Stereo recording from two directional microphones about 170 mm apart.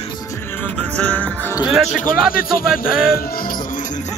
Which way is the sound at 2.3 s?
60° left (ahead or behind).